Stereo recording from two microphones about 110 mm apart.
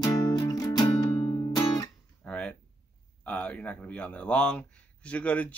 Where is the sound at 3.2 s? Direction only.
15° left (ahead or behind).